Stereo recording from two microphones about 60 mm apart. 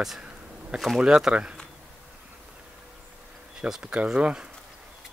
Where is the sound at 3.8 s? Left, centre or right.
Centre.